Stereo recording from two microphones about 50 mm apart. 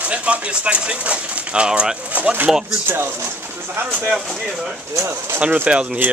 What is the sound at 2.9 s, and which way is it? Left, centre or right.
Speech, right.